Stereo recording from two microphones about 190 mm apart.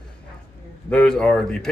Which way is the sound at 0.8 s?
5° left (ahead or behind).